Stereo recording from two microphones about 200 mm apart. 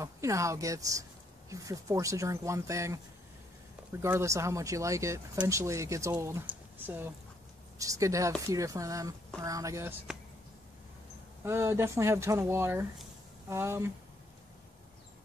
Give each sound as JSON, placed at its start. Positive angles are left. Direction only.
{"t": 0.0, "sound": "speech", "side_deg": -15}
{"t": 11.4, "sound": "speech", "side_deg": -15}